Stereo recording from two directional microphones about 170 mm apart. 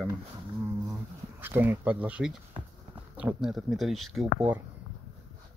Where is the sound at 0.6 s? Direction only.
10° right (ahead or behind).